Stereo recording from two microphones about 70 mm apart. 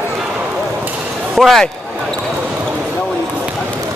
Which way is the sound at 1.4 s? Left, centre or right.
Centre.